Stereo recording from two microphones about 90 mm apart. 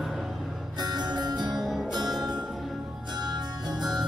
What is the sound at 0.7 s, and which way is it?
Music, 55° right (ahead or behind).